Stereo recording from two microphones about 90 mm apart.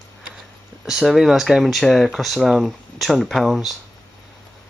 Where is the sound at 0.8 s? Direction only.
5° right (ahead or behind).